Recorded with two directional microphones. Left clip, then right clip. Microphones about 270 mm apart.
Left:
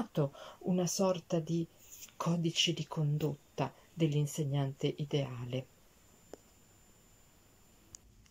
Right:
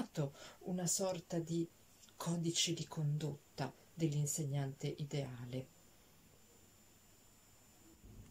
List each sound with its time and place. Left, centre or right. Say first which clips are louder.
0.1 s speech: left 8 dB; centre